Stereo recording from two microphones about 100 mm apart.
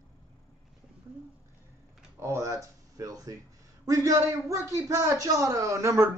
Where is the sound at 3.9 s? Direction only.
30° right (ahead or behind).